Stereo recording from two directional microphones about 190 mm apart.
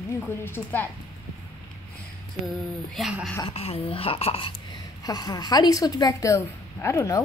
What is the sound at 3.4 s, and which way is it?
A woman's voice, 30° left (ahead or behind).